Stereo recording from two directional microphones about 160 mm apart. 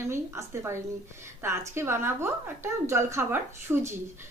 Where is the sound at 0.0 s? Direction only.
15° right (ahead or behind).